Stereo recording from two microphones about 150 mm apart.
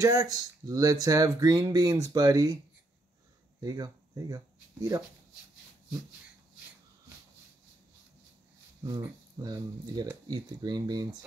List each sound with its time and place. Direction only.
0.0 s speech: 20° right (ahead or behind)
3.6 s speech: 25° right (ahead or behind)
8.8 s speech: 25° right (ahead or behind)